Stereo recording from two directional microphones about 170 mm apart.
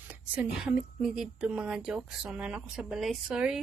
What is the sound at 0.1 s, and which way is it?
A woman's voice, 10° right (ahead or behind).